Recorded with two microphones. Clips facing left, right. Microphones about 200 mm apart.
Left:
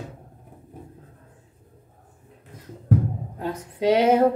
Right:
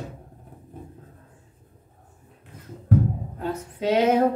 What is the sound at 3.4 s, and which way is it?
Female singing, 10° left (ahead or behind).